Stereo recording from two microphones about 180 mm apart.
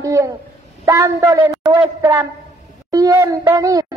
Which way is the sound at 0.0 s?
20° right (ahead or behind).